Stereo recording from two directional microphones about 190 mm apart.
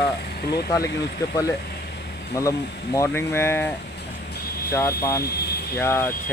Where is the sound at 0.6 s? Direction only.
20° left (ahead or behind).